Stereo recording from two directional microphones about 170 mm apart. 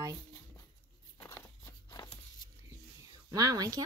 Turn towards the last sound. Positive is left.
turn(degrees=-20)  # may be behind; listen again after turning